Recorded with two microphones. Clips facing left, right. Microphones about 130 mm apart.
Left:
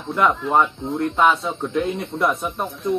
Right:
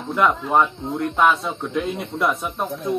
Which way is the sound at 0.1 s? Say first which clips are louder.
Even; centre (ahead or behind).